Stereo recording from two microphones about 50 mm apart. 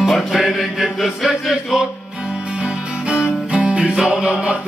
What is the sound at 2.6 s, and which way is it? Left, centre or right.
Music, centre.